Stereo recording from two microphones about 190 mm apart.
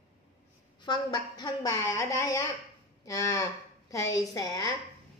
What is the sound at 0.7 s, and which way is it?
A woman's voice, 25° left (ahead or behind).